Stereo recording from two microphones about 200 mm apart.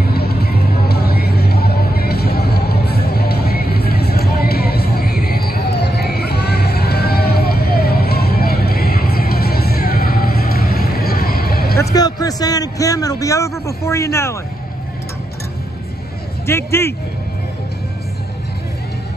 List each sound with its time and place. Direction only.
0.0 s music: 50° left (ahead or behind)
11.9 s a man's voice: 20° left (ahead or behind)
16.4 s speech: 10° left (ahead or behind)